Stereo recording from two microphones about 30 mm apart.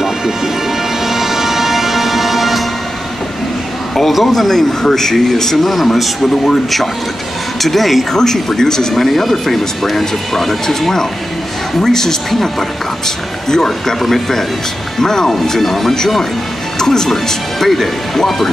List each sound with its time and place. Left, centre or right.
1.0 s music: centre
4.1 s speech: centre
5.7 s speech: centre
8.1 s speech: centre
8.9 s speech: centre
15.0 s speech: centre
16.7 s speech: centre